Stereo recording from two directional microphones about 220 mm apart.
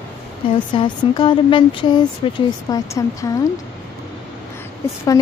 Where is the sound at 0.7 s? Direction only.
20° left (ahead or behind).